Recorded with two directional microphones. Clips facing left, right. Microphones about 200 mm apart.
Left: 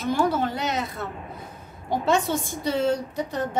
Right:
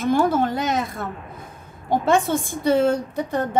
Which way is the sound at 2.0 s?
55° right (ahead or behind).